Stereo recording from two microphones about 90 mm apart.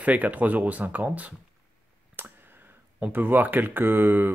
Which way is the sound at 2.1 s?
20° right (ahead or behind).